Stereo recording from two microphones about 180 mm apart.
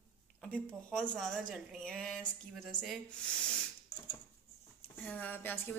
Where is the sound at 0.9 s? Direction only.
5° left (ahead or behind).